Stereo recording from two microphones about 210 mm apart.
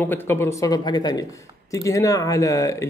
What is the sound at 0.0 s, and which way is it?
Speech, 10° left (ahead or behind).